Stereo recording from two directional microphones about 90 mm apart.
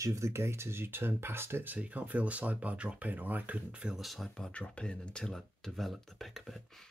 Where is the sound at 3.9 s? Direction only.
Centre (ahead or behind).